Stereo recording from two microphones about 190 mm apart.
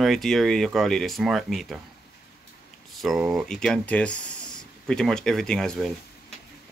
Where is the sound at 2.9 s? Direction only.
Centre (ahead or behind).